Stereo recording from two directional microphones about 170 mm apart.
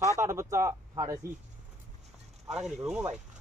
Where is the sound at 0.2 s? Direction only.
15° right (ahead or behind).